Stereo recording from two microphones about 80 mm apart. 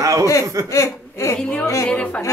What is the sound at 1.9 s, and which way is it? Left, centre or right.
Speech, centre.